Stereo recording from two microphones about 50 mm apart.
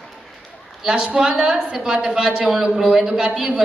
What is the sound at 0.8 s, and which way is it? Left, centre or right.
A woman's voice, centre.